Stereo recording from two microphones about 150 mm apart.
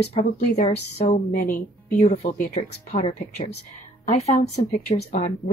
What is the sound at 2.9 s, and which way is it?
Speech, 40° left (ahead or behind).